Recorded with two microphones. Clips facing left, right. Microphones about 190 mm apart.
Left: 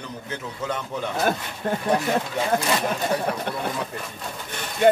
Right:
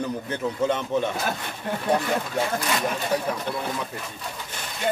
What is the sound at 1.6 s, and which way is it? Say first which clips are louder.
Speech: left 4 dB; 50° left (ahead or behind).